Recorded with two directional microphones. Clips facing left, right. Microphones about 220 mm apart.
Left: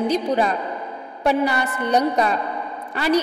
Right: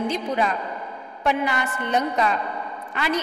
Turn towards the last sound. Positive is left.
turn(degrees=35)  # may be behind; listen again after turning